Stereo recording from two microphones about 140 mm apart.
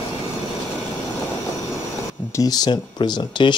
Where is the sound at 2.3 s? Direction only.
25° left (ahead or behind).